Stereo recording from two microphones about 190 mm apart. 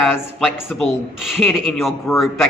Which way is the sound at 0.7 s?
Centre (ahead or behind).